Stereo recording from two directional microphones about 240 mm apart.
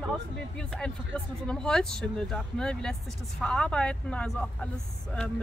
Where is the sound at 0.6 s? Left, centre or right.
Centre.